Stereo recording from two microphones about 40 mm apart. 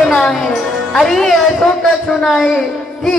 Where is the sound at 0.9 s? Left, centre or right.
Centre.